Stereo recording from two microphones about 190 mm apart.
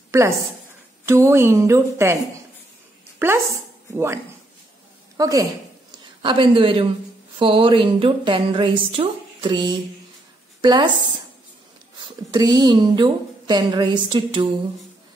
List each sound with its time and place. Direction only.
1.0 s a woman's voice: 15° right (ahead or behind)
3.2 s a woman's voice: 15° right (ahead or behind)
12.3 s speech: 20° right (ahead or behind)